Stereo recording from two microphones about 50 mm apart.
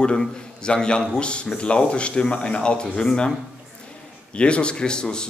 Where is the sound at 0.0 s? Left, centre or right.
Centre.